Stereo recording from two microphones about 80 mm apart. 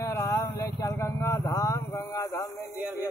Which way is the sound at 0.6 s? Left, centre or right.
Left.